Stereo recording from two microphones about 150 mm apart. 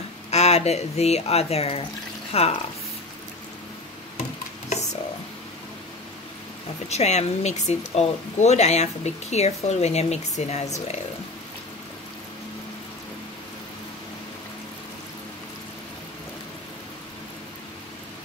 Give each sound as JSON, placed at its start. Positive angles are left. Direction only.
{"t": 0.3, "sound": "speech", "side_deg": 45}
{"t": 6.9, "sound": "speech", "side_deg": 45}